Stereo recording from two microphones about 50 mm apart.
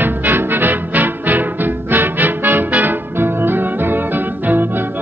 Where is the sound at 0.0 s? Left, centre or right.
Right.